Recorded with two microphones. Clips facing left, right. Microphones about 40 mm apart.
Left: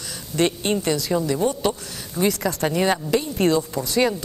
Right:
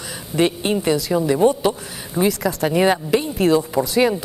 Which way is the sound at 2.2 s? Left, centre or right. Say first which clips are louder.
Right 2 dB; centre.